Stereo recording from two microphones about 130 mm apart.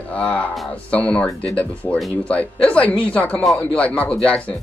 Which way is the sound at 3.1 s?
10° left (ahead or behind).